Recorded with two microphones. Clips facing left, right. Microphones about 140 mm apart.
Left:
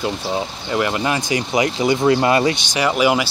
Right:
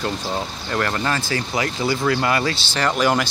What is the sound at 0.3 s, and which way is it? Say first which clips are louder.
Speech: left 3 dB; 10° left (ahead or behind).